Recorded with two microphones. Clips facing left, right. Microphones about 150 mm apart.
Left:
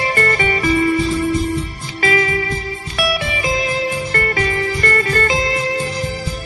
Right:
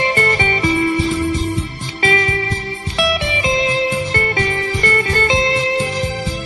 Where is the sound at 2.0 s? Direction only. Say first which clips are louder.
Left 1 dB; 25° right (ahead or behind).